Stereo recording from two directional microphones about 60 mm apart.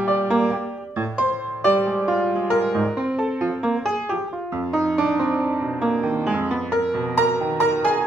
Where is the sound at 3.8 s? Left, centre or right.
Centre.